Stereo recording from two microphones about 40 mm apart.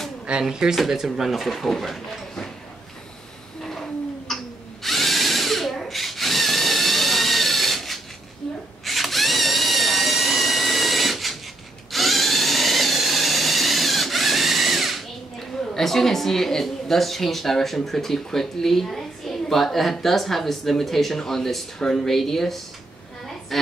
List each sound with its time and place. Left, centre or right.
0.3 s speech: centre
0.8 s speech: centre
4.3 s a sound: centre
4.8 s drill: centre
8.8 s a sound: centre
11.9 s tools: centre
15.3 s a woman's voice: centre